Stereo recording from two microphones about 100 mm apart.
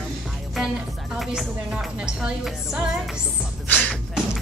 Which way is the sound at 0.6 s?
Centre (ahead or behind).